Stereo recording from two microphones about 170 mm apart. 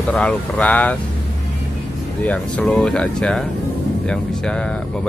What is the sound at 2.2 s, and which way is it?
Speech, 5° left (ahead or behind).